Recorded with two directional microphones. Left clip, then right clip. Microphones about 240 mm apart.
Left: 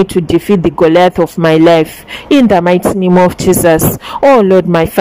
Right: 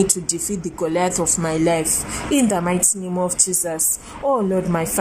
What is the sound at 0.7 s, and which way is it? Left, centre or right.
A woman's voice, left.